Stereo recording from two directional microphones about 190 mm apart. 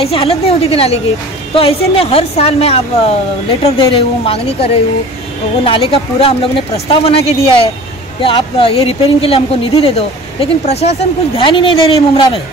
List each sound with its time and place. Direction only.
0.0 s a woman's voice: 30° left (ahead or behind)
5.7 s speech: 30° left (ahead or behind)